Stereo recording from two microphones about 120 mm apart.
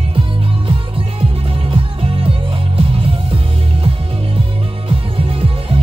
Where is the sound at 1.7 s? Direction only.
45° right (ahead or behind).